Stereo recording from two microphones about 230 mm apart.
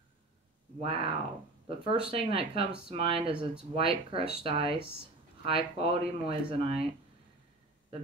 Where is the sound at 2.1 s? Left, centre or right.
Right.